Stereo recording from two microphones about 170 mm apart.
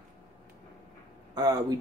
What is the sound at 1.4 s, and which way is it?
Speech, 25° right (ahead or behind).